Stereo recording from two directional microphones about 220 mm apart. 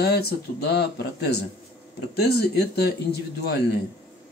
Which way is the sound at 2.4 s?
45° left (ahead or behind).